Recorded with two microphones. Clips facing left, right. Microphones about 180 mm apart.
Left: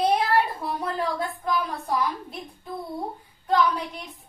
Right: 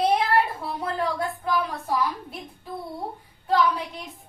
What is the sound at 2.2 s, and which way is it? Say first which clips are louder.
Speech: left 1 dB; 5° right (ahead or behind).